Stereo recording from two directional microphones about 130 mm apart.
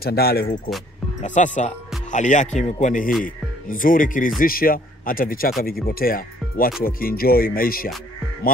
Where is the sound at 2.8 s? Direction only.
90° left.